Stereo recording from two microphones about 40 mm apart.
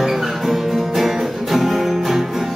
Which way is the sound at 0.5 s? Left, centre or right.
Centre.